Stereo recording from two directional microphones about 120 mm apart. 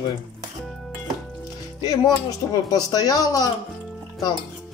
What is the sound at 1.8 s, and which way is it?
Speech, 30° left (ahead or behind).